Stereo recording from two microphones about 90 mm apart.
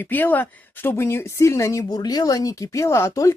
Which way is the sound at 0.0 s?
20° left (ahead or behind).